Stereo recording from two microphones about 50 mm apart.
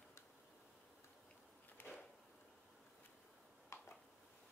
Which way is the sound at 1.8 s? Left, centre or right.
Left.